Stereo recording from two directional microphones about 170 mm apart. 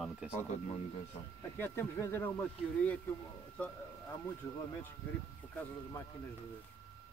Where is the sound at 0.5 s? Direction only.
35° left (ahead or behind).